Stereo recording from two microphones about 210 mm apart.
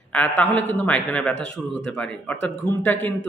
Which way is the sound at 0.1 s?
10° left (ahead or behind).